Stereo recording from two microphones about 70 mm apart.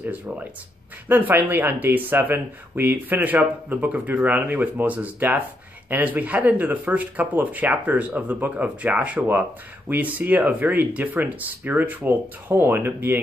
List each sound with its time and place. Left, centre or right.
1.0 s speech: right